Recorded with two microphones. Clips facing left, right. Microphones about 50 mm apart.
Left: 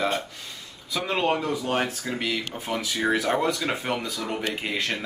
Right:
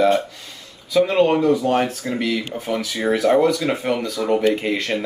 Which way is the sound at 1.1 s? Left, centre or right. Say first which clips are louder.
Right 5 dB; centre.